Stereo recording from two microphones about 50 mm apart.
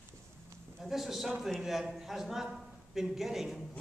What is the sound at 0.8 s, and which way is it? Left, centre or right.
A man's voice, centre.